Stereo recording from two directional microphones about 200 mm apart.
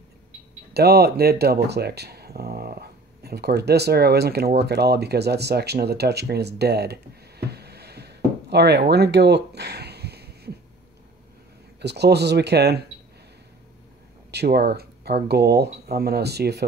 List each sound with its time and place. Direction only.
0.7 s speech: 55° right (ahead or behind)
11.8 s speech: 55° right (ahead or behind)
14.3 s speech: 55° right (ahead or behind)